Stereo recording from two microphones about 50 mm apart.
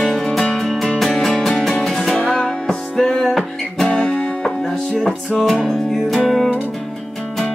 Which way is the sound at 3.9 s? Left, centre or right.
Centre.